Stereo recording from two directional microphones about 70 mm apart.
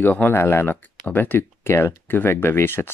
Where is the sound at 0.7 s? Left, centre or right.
Left.